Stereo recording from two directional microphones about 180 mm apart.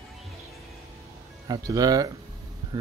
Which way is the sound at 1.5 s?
20° right (ahead or behind).